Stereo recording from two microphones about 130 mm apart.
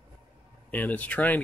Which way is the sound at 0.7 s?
10° left (ahead or behind).